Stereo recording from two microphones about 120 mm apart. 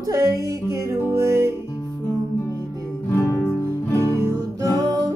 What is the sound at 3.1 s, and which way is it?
Music, 25° left (ahead or behind).